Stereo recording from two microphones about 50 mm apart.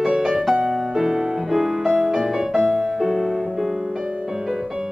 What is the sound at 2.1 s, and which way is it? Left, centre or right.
Music, centre.